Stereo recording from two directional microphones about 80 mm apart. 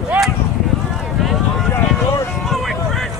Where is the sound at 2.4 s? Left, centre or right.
Centre.